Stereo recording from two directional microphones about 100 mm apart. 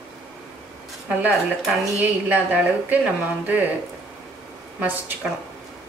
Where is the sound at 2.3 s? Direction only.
15° right (ahead or behind).